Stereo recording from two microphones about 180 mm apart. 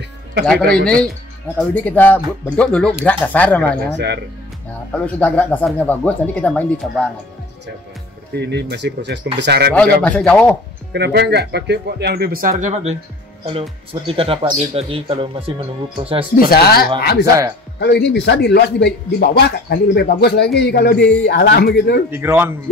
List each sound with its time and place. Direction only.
1.6 s speech: 10° left (ahead or behind)
3.9 s speech: 70° right (ahead or behind)
4.9 s speech: 10° left (ahead or behind)
8.4 s speech: 70° right (ahead or behind)
9.7 s speech: 5° left (ahead or behind)
10.9 s speech: 70° right (ahead or behind); by 16.3 s 30° right (ahead or behind)
16.4 s a man's voice: 60° left (ahead or behind)
22.1 s speech: 10° right (ahead or behind)